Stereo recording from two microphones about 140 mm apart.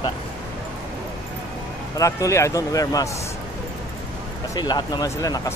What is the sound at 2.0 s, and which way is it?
Speech, 25° left (ahead or behind).